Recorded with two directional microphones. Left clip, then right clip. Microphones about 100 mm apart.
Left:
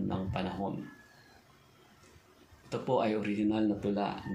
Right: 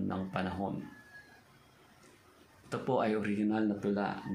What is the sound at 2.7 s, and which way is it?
Speech, 20° right (ahead or behind).